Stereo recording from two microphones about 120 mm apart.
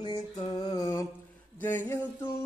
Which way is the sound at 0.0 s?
40° left (ahead or behind).